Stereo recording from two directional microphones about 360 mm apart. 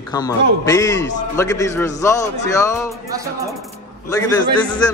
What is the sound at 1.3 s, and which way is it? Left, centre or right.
Speech, centre.